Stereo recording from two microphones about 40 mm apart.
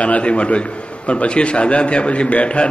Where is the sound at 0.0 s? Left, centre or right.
Left.